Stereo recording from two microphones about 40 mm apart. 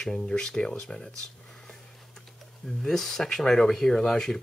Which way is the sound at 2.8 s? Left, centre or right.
Centre.